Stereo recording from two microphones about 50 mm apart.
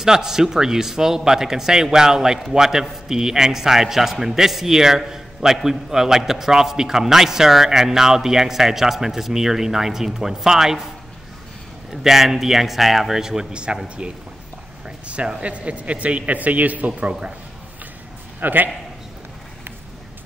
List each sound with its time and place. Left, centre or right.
0.0 s a man's voice: centre
11.9 s a man's voice: centre
14.9 s speech: right
18.4 s a man's voice: right